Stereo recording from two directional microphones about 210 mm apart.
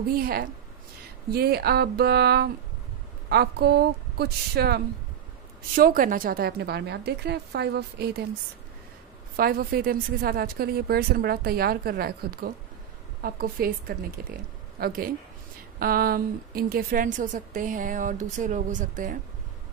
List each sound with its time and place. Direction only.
0.1 s a woman's voice: 45° right (ahead or behind)
9.4 s a woman's voice: 45° right (ahead or behind)